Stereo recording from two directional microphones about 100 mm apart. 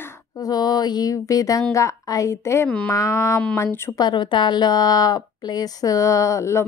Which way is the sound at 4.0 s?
50° left (ahead or behind).